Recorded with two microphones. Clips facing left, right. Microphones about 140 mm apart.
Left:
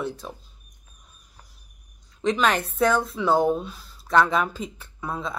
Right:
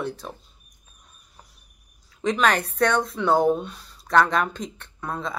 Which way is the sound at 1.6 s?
Centre (ahead or behind).